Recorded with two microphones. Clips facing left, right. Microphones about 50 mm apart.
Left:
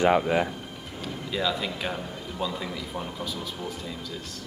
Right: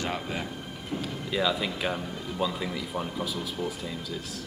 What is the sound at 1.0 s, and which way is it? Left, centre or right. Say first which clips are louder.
Speech: even; centre.